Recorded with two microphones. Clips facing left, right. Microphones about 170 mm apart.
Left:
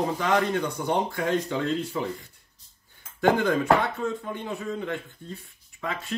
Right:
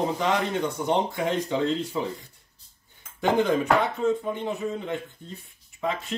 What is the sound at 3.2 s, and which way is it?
Speech, 20° right (ahead or behind).